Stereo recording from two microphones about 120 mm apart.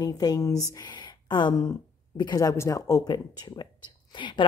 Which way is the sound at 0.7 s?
35° left (ahead or behind).